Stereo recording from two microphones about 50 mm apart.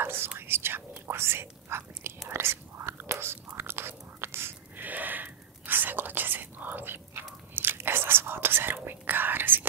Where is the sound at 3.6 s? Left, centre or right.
Right.